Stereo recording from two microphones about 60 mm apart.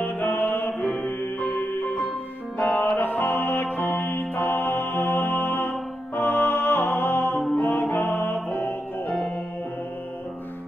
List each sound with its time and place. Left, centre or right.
0.0 s music: left
7.3 s music: centre
7.6 s music: left